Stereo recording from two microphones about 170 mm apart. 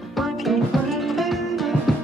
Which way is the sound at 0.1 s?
Centre (ahead or behind).